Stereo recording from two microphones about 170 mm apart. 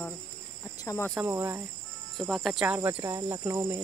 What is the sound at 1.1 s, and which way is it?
Speech, 15° right (ahead or behind).